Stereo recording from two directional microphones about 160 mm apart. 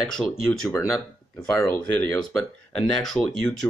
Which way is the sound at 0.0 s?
5° left (ahead or behind).